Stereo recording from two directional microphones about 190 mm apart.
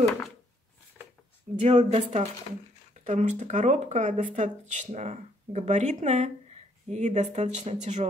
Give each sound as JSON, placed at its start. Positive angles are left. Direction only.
{"t": 1.6, "sound": "speech", "side_deg": -35}